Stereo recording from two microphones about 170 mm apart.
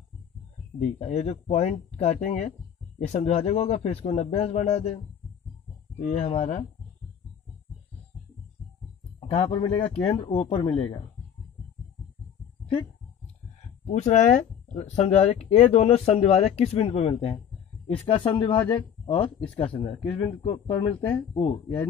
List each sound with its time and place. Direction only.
0.7 s speech: 40° left (ahead or behind)
6.0 s speech: 40° left (ahead or behind)
9.3 s speech: 35° left (ahead or behind)
13.8 s speech: 45° left (ahead or behind)